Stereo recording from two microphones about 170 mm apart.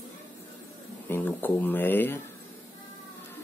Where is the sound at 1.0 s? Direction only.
10° left (ahead or behind).